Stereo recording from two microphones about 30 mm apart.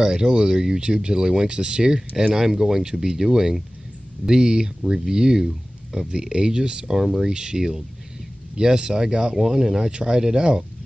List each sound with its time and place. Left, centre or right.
0.0 s speech: right
9.3 s speech: centre